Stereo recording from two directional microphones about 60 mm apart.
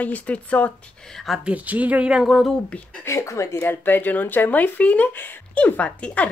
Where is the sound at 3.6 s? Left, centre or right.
Left.